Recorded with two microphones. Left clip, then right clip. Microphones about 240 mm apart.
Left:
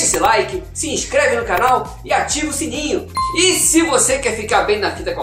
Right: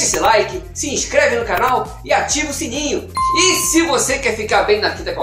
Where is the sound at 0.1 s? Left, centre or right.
Centre.